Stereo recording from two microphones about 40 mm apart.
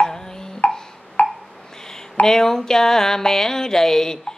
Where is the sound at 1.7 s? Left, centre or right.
Centre.